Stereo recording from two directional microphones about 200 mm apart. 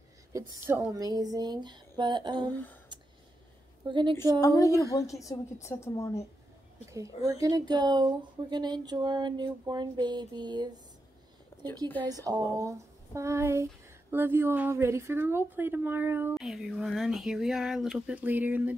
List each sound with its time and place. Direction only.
0.3 s speech: 15° right (ahead or behind)
4.4 s a woman's voice: 15° left (ahead or behind)
7.3 s speech: 20° right (ahead or behind)
11.5 s a sound: 10° left (ahead or behind)
12.3 s a woman's voice: 15° right (ahead or behind)